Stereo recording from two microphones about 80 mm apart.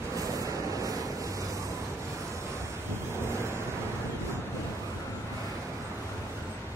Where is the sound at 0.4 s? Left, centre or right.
Right.